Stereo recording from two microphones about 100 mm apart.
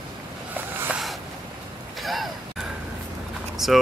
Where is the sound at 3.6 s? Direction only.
5° right (ahead or behind).